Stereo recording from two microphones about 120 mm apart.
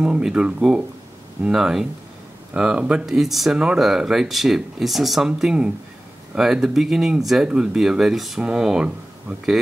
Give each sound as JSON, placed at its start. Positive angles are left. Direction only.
{"t": 0.0, "sound": "speech", "side_deg": -5}